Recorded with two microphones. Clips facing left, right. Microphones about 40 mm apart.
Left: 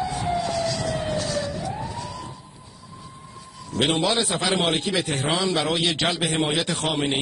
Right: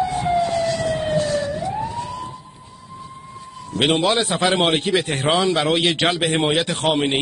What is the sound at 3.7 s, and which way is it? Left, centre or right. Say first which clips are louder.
A man's voice: right 4 dB; right.